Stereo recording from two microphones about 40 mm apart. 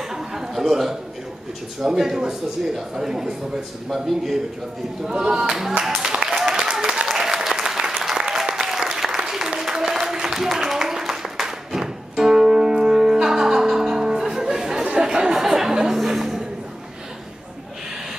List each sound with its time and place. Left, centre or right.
0.1 s a sound: centre
1.8 s a man's voice: centre
5.0 s speech: right
6.7 s applause: right
15.0 s chatter: centre
15.3 s music: centre